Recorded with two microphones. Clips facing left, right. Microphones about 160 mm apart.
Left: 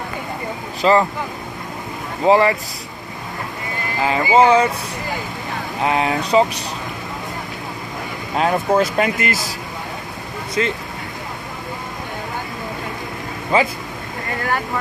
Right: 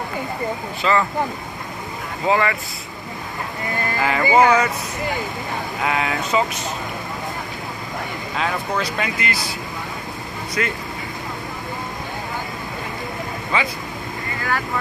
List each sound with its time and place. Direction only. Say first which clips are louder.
0.8 s speech: left 5 dB; 35° left (ahead or behind)
2.2 s speech: left 6 dB; 35° left (ahead or behind)
4.0 s speech: left 2 dB; 15° left (ahead or behind)
4.4 s speech: left 3 dB; 30° left (ahead or behind)
5.9 s speech: left 4 dB; 30° left (ahead or behind)
8.4 s speech: left 8 dB; 40° left (ahead or behind)
10.6 s speech: left 4 dB; 25° left (ahead or behind)
13.5 s speech: left 6 dB; 40° left (ahead or behind)